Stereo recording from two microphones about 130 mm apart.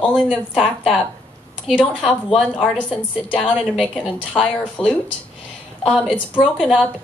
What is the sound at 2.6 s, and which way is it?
Speech, 10° left (ahead or behind).